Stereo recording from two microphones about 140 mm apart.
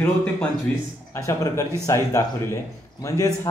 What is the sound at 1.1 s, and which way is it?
Speech, 20° left (ahead or behind).